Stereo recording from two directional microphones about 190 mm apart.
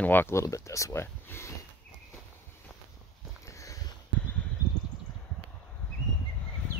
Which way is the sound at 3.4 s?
15° left (ahead or behind).